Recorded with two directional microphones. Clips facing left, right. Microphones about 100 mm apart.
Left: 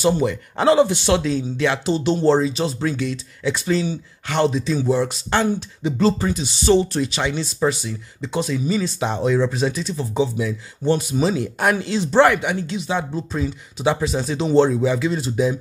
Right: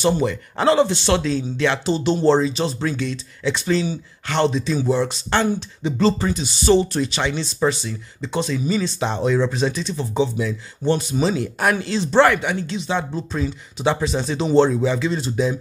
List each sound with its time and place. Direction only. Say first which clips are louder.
0.0 s speech: left 1 dB; 15° left (ahead or behind)